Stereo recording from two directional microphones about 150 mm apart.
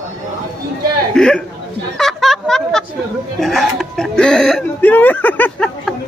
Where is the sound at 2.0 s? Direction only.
Centre (ahead or behind).